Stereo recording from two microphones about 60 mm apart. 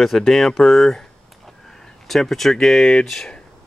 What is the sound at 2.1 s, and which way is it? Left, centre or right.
Speech, centre.